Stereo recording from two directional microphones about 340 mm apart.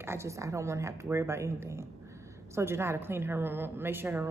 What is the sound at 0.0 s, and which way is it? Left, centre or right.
A woman's voice, centre.